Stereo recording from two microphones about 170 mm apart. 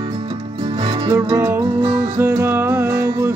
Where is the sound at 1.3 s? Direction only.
15° right (ahead or behind).